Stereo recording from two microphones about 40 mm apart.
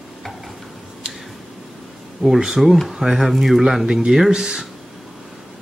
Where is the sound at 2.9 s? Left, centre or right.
Centre.